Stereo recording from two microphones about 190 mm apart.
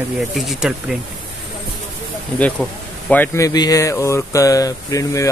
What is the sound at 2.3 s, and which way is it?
A man's voice, 5° left (ahead or behind).